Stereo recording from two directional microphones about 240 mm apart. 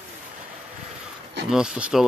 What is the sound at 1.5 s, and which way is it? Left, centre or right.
Speech, centre.